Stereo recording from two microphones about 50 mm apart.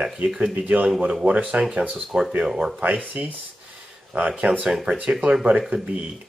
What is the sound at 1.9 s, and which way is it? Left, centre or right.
Speech, centre.